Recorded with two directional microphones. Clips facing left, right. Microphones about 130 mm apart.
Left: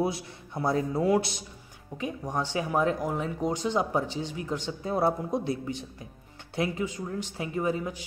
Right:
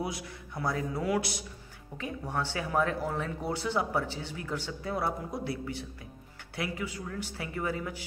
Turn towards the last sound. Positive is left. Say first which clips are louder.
# left 5 dB
turn(degrees=20)  # may be behind; listen again after turning